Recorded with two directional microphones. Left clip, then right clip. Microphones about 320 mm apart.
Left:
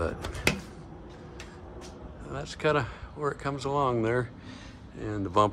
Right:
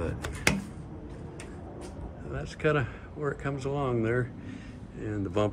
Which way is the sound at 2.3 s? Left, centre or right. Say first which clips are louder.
Left 1 dB; centre.